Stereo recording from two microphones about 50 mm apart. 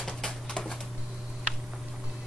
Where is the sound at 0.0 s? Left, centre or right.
Centre.